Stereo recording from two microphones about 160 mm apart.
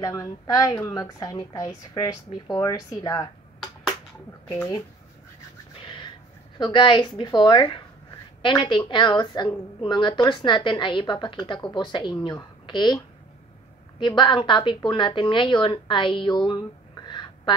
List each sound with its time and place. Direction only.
0.0 s a woman's voice: 20° left (ahead or behind)
5.8 s a sound: 30° left (ahead or behind)
6.6 s a woman's voice: 30° left (ahead or behind)